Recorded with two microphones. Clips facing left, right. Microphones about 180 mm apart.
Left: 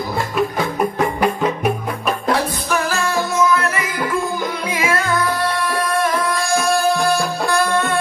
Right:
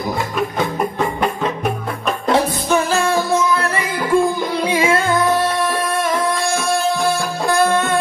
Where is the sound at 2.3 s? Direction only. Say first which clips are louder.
Right 6 dB; 25° right (ahead or behind).